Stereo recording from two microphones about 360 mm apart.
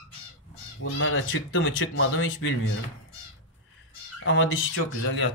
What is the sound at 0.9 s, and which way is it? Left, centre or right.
Speech, left.